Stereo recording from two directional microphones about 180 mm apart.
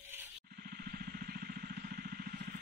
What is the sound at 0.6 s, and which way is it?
Vehicle, 55° right (ahead or behind).